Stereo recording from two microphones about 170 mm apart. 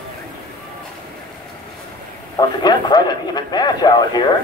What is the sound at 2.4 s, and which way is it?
Speech, 25° left (ahead or behind).